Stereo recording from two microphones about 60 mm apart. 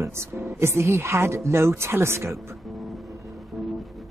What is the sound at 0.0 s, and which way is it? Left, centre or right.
Speech, right.